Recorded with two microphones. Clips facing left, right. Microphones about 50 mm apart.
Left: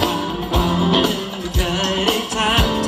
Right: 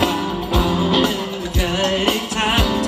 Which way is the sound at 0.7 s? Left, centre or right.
Centre.